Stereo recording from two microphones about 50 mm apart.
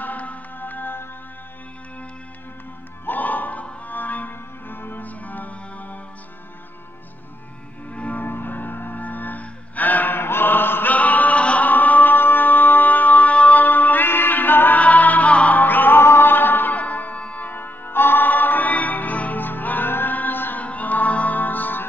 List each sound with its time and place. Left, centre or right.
0.0 s music: left
3.1 s music: left
7.9 s music: left
11.7 s music: left
14.8 s music: left
16.7 s music: left
17.5 s music: left